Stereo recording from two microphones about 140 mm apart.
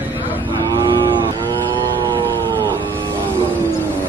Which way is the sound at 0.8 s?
30° right (ahead or behind).